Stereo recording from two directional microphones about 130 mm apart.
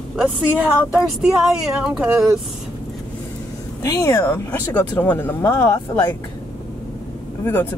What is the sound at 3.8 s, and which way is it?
Speech, 25° left (ahead or behind).